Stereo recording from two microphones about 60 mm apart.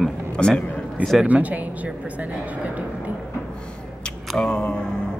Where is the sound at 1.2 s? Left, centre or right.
Right.